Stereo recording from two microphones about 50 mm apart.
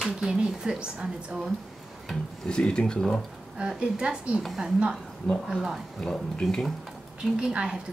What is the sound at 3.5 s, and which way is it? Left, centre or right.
Speech, centre.